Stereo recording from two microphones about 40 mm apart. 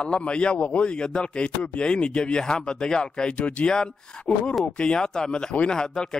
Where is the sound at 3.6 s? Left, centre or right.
Centre.